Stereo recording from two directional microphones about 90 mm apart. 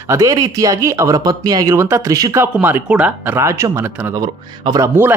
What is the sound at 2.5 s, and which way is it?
A man's voice, 20° right (ahead or behind).